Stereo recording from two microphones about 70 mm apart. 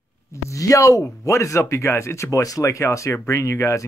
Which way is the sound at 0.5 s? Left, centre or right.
Left.